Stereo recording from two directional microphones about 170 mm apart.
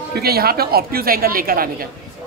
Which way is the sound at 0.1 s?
65° right (ahead or behind).